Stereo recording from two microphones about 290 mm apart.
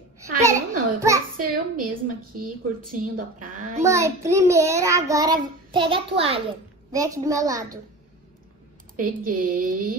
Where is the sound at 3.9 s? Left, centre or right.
Centre.